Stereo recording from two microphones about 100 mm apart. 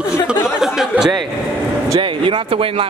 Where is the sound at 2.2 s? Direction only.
65° right (ahead or behind).